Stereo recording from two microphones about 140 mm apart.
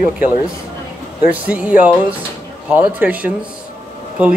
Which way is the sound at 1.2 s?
10° right (ahead or behind).